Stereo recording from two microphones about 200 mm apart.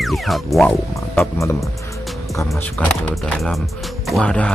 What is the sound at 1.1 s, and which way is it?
Speech, 15° left (ahead or behind).